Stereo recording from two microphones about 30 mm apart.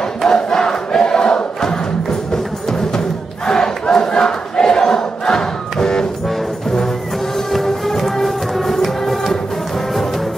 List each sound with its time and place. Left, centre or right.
0.2 s crowd: centre
4.1 s choir: left
7.5 s music: centre